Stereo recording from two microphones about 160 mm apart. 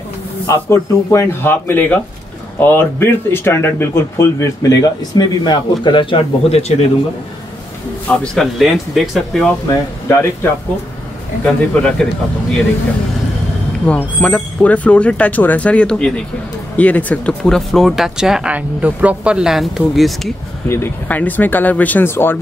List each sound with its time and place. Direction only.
0.5 s speech: 15° left (ahead or behind); by 6.9 s 40° left (ahead or behind)
8.2 s speech: centre (ahead or behind)
9.7 s speech: 15° left (ahead or behind)
11.4 s speech: 5° left (ahead or behind)
13.8 s speech: 10° left (ahead or behind)
20.6 s speech: 15° left (ahead or behind)